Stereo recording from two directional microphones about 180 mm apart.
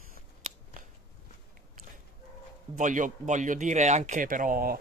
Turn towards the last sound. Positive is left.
turn(degrees=-50)  # may be behind; listen again after turning